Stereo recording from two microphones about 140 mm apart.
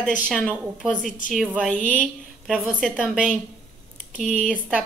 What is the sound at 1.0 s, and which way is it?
Speech, 70° left (ahead or behind).